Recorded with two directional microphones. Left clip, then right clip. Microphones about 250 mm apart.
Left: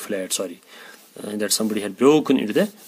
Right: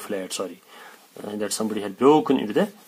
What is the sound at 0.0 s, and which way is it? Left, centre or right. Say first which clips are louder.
Speech: left 3 dB; left.